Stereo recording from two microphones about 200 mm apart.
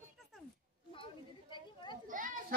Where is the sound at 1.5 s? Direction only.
20° left (ahead or behind).